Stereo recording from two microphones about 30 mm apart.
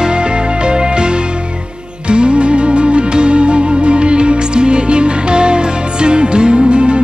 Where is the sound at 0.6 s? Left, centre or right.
Right.